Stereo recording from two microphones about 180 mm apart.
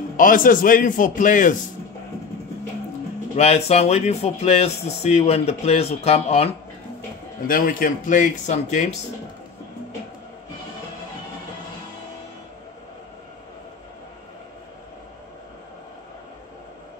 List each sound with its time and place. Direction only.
0.2 s a man's voice: 50° left (ahead or behind)
3.3 s speech: 35° left (ahead or behind)
7.4 s a man's voice: 50° left (ahead or behind)